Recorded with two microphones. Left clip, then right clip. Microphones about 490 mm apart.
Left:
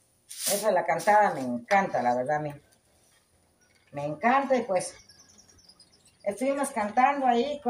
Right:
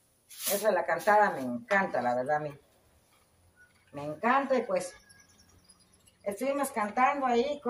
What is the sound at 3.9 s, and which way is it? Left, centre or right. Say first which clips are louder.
Speech: left 3 dB; right.